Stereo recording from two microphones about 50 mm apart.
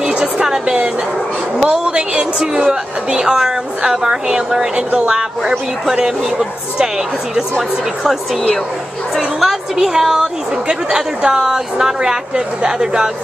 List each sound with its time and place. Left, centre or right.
0.0 s a sound: centre
1.6 s a woman's voice: centre
9.1 s a woman's voice: centre